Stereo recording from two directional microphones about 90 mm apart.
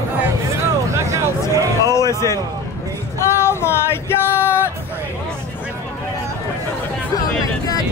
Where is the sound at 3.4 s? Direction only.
30° left (ahead or behind).